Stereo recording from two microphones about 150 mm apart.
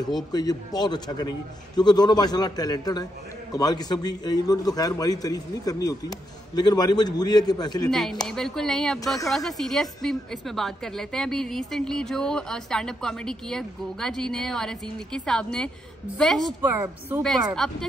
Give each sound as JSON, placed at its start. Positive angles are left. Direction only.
{"t": 0.0, "sound": "a man's voice", "side_deg": 25}
{"t": 7.9, "sound": "a woman's voice", "side_deg": 0}
{"t": 16.7, "sound": "speech", "side_deg": -20}
{"t": 17.2, "sound": "a woman's voice", "side_deg": 5}